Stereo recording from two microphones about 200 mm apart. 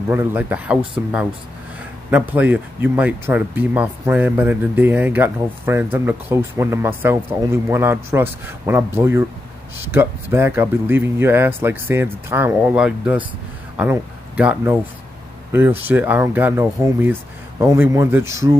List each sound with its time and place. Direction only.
0.1 s speech: 10° right (ahead or behind)